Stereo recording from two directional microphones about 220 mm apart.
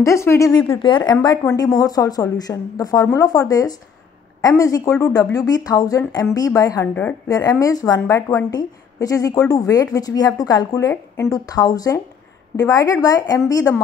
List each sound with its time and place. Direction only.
0.0 s a woman's voice: 10° left (ahead or behind)